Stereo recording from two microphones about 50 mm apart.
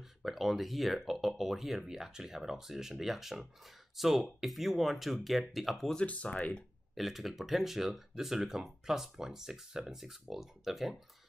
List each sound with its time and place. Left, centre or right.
0.2 s speech: centre
6.0 s speech: left
7.0 s speech: centre